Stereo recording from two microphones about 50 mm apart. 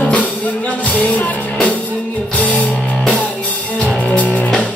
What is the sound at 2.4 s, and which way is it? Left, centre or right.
Music, left.